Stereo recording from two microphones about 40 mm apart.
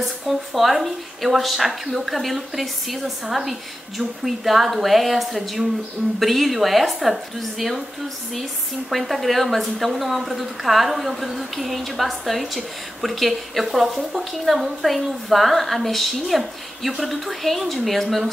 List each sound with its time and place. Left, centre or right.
0.0 s a woman's voice: centre
8.9 s a woman's voice: centre